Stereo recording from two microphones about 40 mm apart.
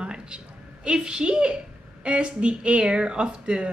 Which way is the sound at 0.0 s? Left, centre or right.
Right.